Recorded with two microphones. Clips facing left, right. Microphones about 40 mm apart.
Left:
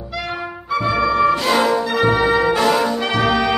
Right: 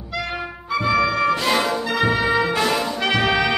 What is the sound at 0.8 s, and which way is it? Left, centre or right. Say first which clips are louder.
Music: left 2 dB; centre.